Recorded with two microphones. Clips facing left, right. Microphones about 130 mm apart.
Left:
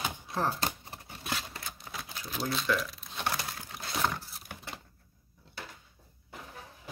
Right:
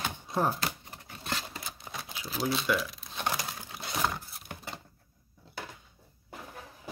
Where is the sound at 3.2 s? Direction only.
10° right (ahead or behind).